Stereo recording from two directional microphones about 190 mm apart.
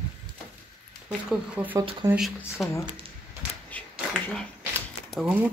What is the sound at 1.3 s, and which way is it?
Speech, 5° right (ahead or behind).